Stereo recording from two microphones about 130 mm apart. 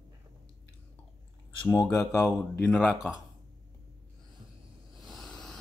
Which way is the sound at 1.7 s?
5° left (ahead or behind).